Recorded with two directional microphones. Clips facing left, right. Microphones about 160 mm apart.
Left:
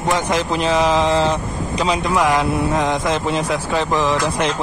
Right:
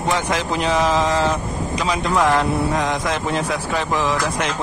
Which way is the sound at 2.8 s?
25° left (ahead or behind).